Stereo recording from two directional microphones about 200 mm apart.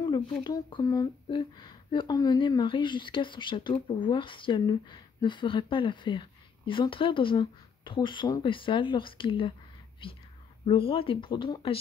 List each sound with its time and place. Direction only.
0.0 s speech: 20° left (ahead or behind)